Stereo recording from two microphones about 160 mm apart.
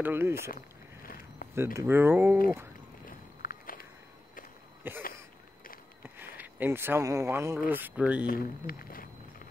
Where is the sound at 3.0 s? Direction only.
65° left (ahead or behind).